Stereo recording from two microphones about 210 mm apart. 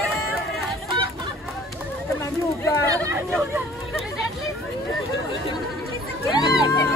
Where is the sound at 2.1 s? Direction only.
15° left (ahead or behind).